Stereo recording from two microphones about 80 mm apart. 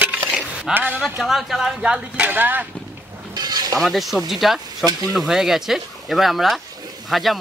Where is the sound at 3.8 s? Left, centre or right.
Centre.